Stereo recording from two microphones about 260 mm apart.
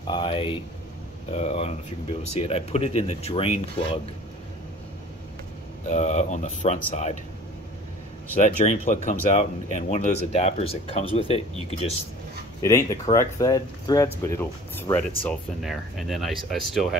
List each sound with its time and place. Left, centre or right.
0.0 s speech: centre
5.9 s speech: left
8.4 s speech: left
12.6 s speech: centre